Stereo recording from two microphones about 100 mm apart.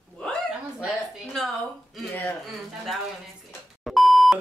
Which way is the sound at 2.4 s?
Centre (ahead or behind).